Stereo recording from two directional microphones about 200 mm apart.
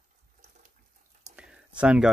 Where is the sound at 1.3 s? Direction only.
5° right (ahead or behind).